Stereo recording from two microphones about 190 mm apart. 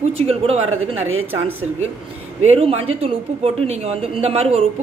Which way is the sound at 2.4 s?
30° right (ahead or behind).